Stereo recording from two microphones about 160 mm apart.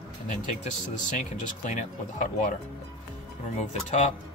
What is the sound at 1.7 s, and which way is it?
Speech, 50° left (ahead or behind).